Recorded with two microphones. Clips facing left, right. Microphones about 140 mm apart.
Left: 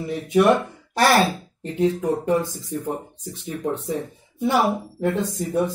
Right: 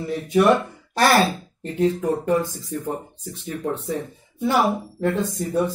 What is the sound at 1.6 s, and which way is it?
Speech, 20° left (ahead or behind).